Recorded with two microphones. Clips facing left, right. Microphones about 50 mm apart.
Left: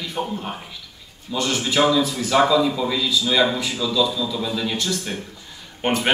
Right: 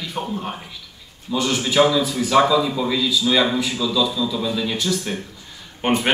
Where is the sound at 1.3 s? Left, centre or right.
Centre.